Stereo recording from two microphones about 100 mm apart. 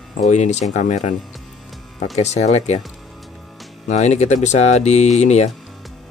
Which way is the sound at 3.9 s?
90° left.